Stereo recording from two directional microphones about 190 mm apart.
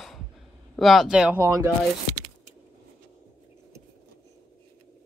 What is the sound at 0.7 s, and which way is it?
Speech, centre (ahead or behind).